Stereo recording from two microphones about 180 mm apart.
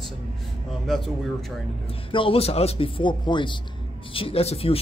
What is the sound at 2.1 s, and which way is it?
Speech, 30° left (ahead or behind).